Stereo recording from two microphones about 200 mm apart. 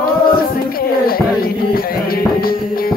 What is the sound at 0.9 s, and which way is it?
Music, 50° left (ahead or behind).